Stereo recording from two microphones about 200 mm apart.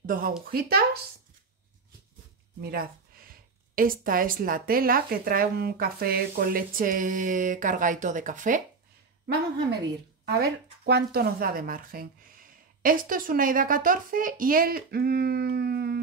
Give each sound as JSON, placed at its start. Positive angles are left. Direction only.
{"t": 0.0, "sound": "speech", "side_deg": -45}
{"t": 2.6, "sound": "speech", "side_deg": -50}
{"t": 10.3, "sound": "speech", "side_deg": -55}